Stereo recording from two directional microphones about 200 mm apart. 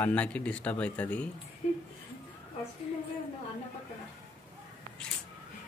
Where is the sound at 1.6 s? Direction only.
40° left (ahead or behind).